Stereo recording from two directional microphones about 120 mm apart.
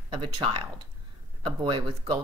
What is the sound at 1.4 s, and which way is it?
Speech, 40° right (ahead or behind).